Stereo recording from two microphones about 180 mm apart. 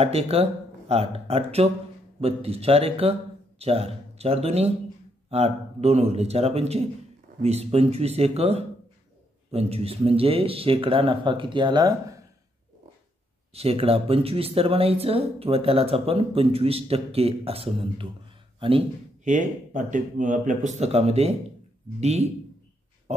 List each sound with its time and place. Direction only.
0.0 s speech: 35° right (ahead or behind)
13.5 s a man's voice: 35° right (ahead or behind)
19.3 s speech: 45° right (ahead or behind)